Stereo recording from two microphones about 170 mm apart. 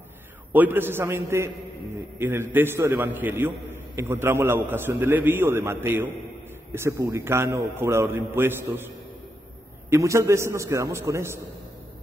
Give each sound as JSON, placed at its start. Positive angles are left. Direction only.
{"t": 0.5, "sound": "a man's voice", "side_deg": -10}